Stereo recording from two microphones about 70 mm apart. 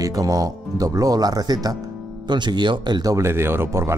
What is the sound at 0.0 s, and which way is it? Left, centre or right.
Speech, right.